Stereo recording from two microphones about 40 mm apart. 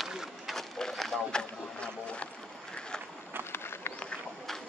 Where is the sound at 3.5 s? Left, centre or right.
Left.